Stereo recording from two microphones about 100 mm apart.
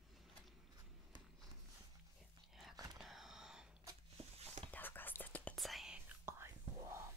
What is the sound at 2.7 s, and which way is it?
Whispering, 40° right (ahead or behind).